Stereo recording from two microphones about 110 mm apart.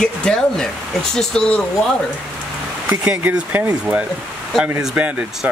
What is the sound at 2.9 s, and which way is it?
Speech, 15° right (ahead or behind).